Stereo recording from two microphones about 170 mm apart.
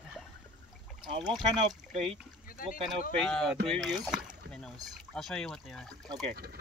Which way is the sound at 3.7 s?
Centre (ahead or behind).